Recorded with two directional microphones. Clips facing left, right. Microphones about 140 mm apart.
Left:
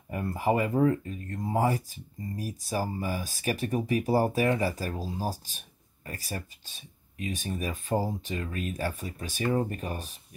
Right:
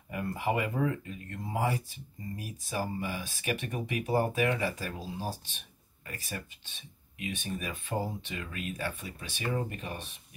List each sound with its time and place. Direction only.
0.1 s speech: 35° left (ahead or behind)